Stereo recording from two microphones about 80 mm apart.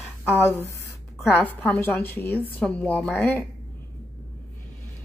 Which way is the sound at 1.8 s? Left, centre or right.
Left.